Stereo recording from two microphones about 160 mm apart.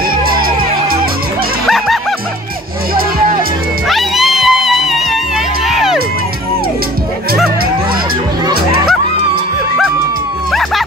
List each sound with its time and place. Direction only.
0.2 s music: 65° right (ahead or behind)
1.7 s music: centre (ahead or behind)
3.9 s music: centre (ahead or behind)